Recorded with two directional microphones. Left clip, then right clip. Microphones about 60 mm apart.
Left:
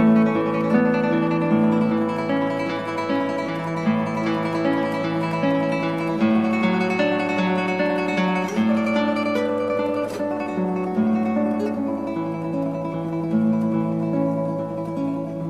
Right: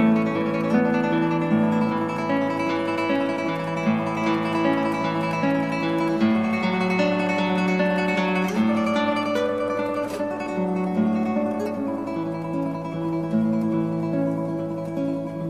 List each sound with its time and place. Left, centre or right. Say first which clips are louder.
0.0 s music: left 3 dB; right
3.8 s music: even; right
6.2 s music: left 2 dB; right
11.0 s music: left 2 dB; right